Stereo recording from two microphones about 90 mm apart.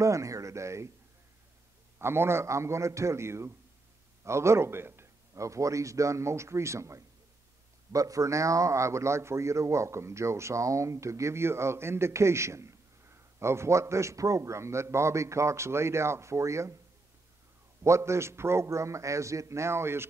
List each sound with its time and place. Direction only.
0.0 s a man's voice: 35° right (ahead or behind)
2.0 s a man's voice: 30° right (ahead or behind)
17.8 s a man's voice: 30° right (ahead or behind)